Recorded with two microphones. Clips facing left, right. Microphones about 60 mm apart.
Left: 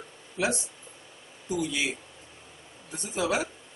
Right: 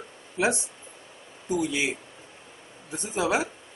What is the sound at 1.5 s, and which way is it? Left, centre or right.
Speech, right.